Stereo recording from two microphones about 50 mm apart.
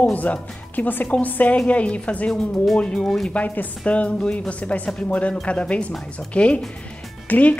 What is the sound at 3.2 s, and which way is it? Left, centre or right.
A woman's voice, left.